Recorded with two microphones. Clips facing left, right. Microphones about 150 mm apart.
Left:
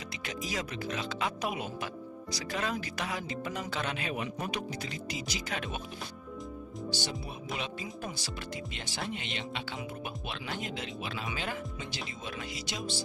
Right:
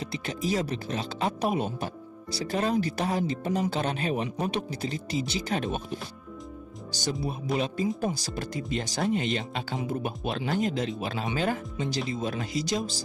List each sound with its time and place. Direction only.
0.1 s speech: 30° right (ahead or behind)
6.9 s speech: 45° right (ahead or behind)